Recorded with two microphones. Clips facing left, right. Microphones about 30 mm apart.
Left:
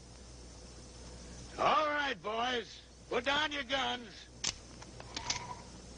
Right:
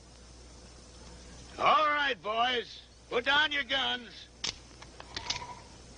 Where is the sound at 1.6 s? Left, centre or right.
Right.